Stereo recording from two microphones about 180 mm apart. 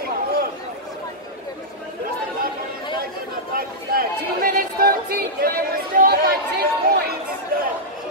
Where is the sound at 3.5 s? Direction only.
55° right (ahead or behind).